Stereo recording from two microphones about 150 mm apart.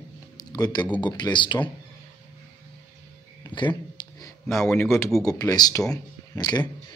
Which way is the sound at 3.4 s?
30° left (ahead or behind).